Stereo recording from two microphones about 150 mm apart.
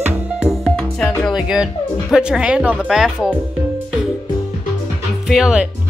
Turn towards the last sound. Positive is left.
turn(degrees=-5)  # may be behind; listen again after turning